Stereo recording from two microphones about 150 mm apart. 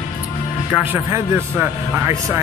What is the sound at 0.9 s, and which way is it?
Speech, 20° right (ahead or behind).